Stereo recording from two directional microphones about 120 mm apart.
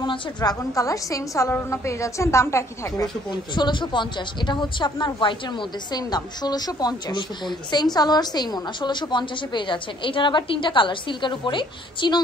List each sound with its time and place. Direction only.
0.0 s a woman's voice: 35° left (ahead or behind)
3.3 s a woman's voice: 40° left (ahead or behind)